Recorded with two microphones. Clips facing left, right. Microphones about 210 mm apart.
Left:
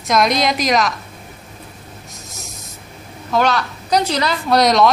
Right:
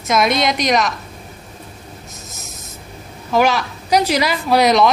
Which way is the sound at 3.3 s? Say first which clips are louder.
Right 1 dB; 10° right (ahead or behind).